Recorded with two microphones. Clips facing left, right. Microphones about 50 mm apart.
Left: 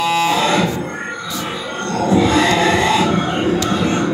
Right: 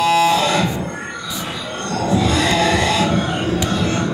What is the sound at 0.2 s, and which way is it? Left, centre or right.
Music, left.